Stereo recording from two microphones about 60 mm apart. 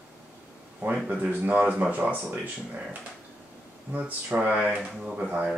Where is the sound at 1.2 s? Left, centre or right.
Right.